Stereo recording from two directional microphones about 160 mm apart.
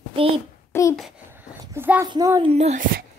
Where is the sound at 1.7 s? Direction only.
15° right (ahead or behind).